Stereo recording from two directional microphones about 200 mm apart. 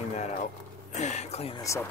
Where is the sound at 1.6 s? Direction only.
15° left (ahead or behind).